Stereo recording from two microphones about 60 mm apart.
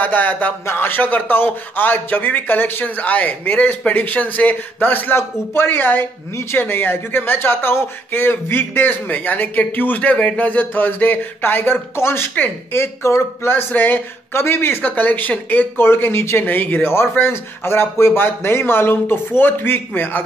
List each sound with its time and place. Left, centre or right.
0.0 s a sound: left
0.7 s speech: left
13.5 s speech: left
16.4 s speech: left